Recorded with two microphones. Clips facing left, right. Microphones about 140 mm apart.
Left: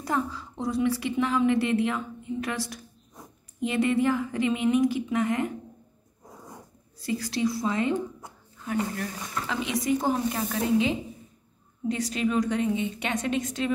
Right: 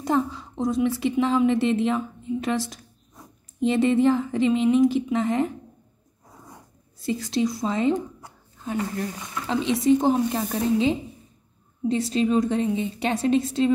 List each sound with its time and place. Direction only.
0.0 s a woman's voice: 25° right (ahead or behind)
7.0 s a woman's voice: 25° right (ahead or behind)
9.5 s a woman's voice: 30° right (ahead or behind)